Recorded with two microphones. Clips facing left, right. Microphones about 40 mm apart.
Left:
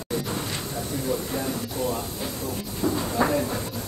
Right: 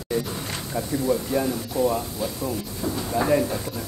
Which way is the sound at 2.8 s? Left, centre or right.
Left.